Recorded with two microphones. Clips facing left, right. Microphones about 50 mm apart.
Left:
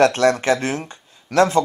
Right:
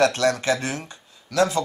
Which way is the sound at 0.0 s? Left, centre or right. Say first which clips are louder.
Left 4 dB; left.